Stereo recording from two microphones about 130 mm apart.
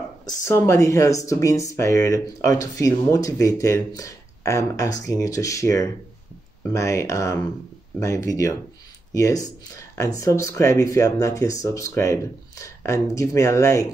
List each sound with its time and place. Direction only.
0.2 s speech: 25° left (ahead or behind)